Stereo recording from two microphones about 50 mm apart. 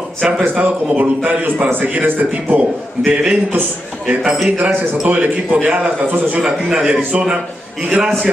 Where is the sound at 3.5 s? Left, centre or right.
Right.